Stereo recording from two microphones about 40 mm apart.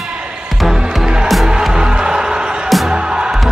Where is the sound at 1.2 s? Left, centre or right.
Centre.